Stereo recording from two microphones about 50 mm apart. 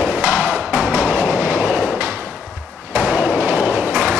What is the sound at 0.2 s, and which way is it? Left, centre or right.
Wood block, right.